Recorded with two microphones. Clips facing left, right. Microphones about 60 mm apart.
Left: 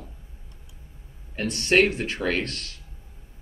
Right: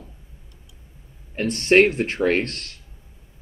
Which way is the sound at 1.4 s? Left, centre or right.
Right.